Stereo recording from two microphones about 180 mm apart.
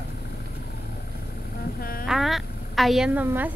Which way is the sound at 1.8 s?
55° left (ahead or behind).